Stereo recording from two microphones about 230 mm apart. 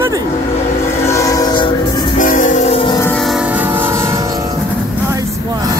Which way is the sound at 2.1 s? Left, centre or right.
Left.